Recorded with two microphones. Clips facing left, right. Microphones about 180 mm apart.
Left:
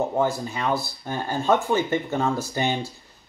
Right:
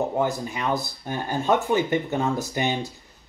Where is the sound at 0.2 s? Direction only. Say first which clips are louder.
Left 1 dB; 15° right (ahead or behind).